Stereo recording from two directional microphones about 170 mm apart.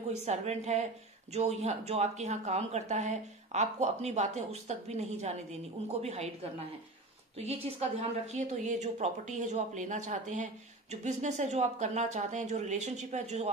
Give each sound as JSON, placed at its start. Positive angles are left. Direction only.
{"t": 0.1, "sound": "speech", "side_deg": -40}
{"t": 7.3, "sound": "a woman's voice", "side_deg": -35}